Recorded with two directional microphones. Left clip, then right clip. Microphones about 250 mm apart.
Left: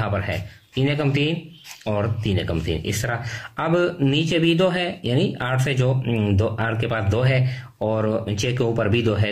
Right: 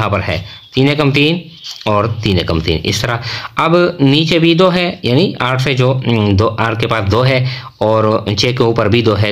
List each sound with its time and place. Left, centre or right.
0.0 s speech: right